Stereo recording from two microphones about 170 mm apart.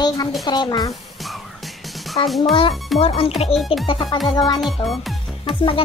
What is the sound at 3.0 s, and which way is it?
Speech, 35° left (ahead or behind).